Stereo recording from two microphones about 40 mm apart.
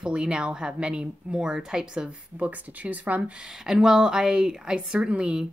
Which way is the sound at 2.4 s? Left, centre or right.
Right.